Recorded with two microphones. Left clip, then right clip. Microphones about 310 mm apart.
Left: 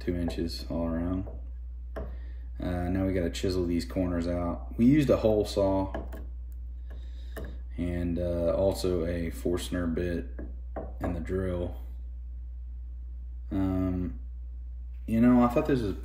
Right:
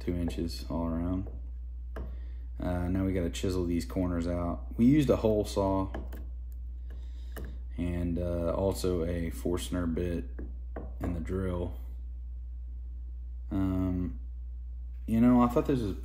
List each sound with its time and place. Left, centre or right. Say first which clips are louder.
0.0 s speech: left 3 dB; centre
2.5 s a sound: left 1 dB; centre
3.9 s speech: left 2 dB; centre
4.9 s speech: left 3 dB; centre
5.6 s speech: left 3 dB; centre
7.2 s speech: left 4 dB; centre
13.5 s speech: left 2 dB; centre